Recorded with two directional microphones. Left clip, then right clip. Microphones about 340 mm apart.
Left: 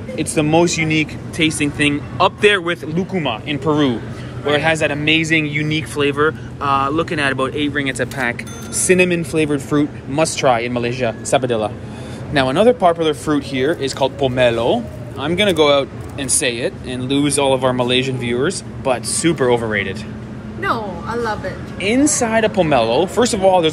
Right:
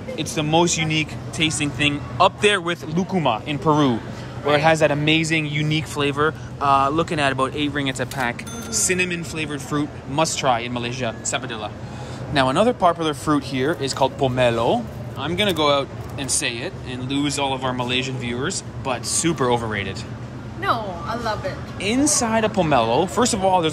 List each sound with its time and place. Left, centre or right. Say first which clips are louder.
0.1 s speech: left 4 dB; right
0.4 s speech: left 4 dB; centre
0.7 s speech: left 4 dB; right
1.3 s speech: left 4 dB; centre
5.0 s speech: left 4 dB; right
5.3 s speech: left 5 dB; centre
10.9 s speech: left 6 dB; right
12.4 s speech: left 5 dB; centre
13.4 s speech: left 4 dB; right
13.9 s speech: even; centre
16.2 s speech: left 5 dB; right
16.6 s speech: left 7 dB; centre
20.6 s speech: left 2 dB; centre
21.7 s a woman's voice: left 5 dB; centre